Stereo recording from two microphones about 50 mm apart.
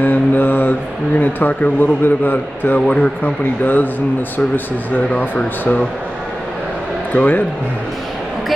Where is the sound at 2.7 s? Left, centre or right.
Left.